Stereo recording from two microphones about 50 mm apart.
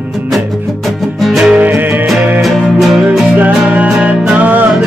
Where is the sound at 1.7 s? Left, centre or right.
Right.